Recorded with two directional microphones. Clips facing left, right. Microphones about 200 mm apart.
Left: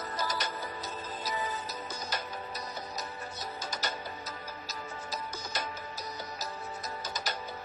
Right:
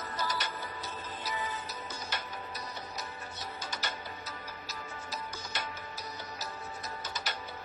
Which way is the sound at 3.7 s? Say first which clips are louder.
Left 3 dB; 40° left (ahead or behind).